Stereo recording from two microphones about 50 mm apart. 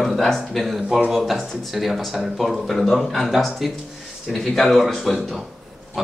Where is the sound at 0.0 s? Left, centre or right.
Centre.